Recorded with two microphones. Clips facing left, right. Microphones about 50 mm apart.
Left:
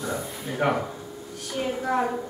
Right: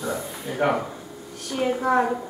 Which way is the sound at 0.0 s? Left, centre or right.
Centre.